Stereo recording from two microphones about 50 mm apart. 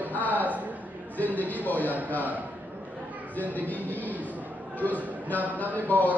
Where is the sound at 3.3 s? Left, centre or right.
Left.